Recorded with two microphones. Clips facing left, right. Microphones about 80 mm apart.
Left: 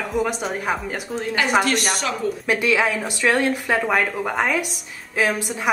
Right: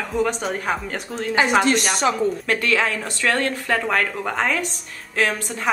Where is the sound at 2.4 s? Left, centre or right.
Centre.